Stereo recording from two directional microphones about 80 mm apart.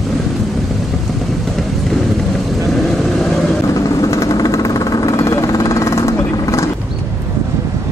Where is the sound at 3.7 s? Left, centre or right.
Left.